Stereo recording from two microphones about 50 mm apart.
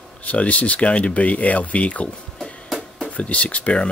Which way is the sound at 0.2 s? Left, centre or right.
Left.